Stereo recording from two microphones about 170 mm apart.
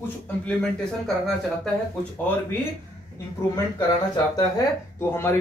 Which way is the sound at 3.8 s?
25° left (ahead or behind).